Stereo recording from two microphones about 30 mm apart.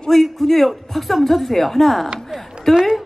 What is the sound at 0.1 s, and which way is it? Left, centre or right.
A woman's voice, centre.